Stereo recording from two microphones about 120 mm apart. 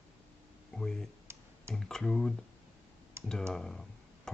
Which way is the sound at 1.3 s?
20° right (ahead or behind).